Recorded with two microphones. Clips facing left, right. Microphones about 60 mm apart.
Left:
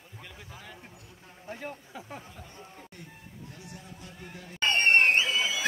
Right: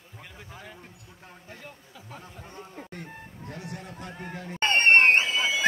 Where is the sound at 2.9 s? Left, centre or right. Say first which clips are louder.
Right 7 dB; right.